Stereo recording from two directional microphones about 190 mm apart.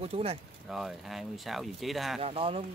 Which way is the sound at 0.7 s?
Centre (ahead or behind).